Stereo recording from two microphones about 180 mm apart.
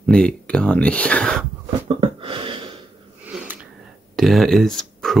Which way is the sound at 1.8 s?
30° right (ahead or behind).